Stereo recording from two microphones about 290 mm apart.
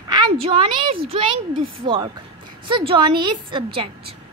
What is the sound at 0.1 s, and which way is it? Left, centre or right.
A woman's voice, centre.